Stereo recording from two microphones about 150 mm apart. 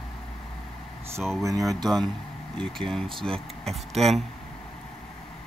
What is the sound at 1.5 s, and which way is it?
Speech, 25° right (ahead or behind).